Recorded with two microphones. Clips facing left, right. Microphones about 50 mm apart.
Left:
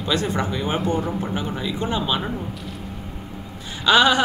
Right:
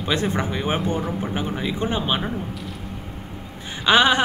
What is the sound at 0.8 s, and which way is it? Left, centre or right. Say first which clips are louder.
Speech: left 2 dB; centre.